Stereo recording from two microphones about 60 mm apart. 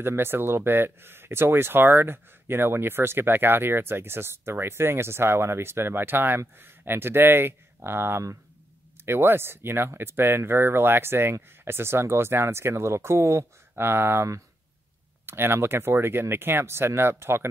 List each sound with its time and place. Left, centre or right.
0.0 s speech: right